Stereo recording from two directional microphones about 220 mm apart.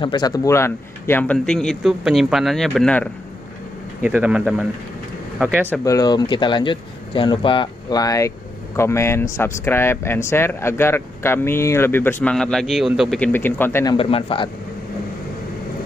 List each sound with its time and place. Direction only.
0.0 s speech: 20° left (ahead or behind); by 3.1 s 5° left (ahead or behind)
4.0 s speech: 5° right (ahead or behind)
5.7 s speech: 15° left (ahead or behind)
13.9 s speech: 25° left (ahead or behind)